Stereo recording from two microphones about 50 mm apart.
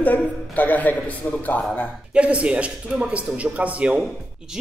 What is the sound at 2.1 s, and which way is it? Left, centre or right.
Speech, right.